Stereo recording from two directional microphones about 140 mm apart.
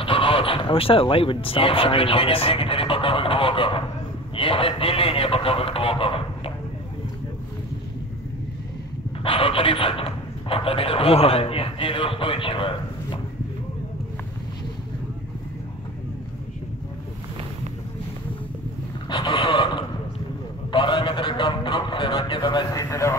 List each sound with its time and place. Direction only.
0.0 s a man's voice: 40° left (ahead or behind)
9.2 s a man's voice: 40° left (ahead or behind)
19.0 s a sound: 35° left (ahead or behind)